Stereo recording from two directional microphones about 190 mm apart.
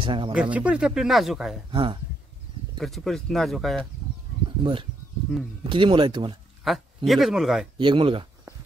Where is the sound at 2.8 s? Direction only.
Centre (ahead or behind).